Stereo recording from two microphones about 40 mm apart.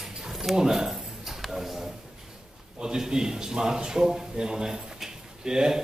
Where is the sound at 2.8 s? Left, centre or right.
Centre.